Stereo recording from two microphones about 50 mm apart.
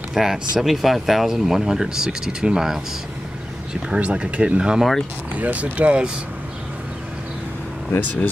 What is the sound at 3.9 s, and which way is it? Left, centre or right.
Speech, right.